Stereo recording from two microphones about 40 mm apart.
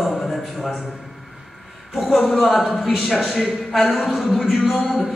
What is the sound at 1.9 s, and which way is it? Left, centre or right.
A man's voice, centre.